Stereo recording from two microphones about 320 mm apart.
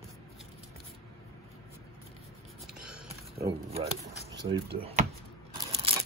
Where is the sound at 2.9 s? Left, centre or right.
Centre.